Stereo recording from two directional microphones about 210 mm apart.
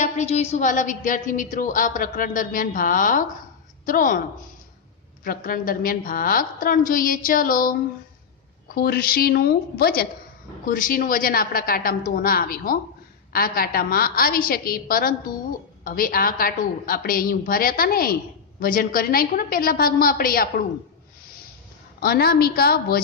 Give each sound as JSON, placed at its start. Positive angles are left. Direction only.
{"t": 0.0, "sound": "a woman's voice", "side_deg": 30}
{"t": 5.2, "sound": "a woman's voice", "side_deg": 40}
{"t": 8.7, "sound": "a woman's voice", "side_deg": 45}
{"t": 22.0, "sound": "a woman's voice", "side_deg": 45}